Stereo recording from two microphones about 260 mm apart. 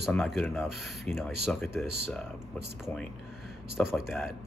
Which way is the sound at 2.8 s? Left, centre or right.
Centre.